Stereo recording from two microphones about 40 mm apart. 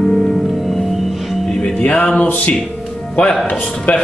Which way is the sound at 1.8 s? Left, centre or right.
Left.